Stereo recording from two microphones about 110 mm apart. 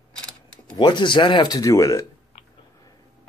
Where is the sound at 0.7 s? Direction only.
45° left (ahead or behind).